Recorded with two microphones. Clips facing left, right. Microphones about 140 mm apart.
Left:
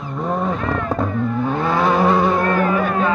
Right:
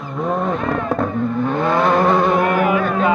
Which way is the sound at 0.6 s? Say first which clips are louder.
Right 1 dB; 20° right (ahead or behind).